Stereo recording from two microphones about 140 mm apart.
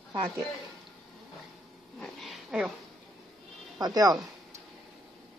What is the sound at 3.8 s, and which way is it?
Speech, 25° right (ahead or behind).